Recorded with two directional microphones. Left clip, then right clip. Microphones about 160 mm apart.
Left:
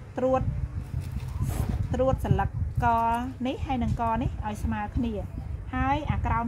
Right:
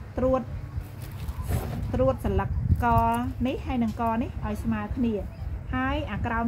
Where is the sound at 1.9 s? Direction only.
50° left (ahead or behind).